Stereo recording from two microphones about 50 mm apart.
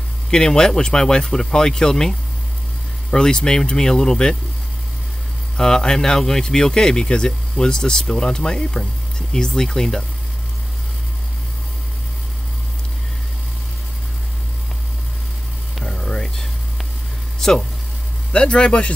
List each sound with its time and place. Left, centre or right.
0.3 s speech: centre
5.6 s speech: centre
15.7 s a sound: centre
18.3 s a man's voice: left